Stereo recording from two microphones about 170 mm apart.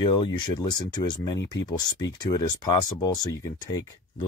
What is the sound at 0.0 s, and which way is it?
Speech, 30° left (ahead or behind).